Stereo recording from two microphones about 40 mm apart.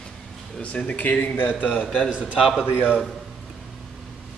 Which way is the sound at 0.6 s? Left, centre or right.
Left.